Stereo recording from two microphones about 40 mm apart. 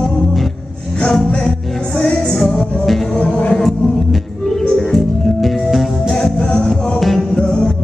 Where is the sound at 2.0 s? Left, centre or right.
Centre.